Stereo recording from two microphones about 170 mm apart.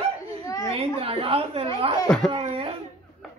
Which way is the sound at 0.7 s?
35° right (ahead or behind).